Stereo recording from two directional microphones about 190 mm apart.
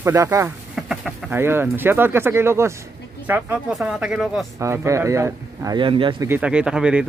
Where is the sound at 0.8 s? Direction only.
Centre (ahead or behind).